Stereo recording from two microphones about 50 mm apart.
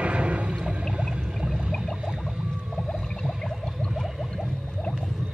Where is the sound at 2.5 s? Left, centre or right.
Centre.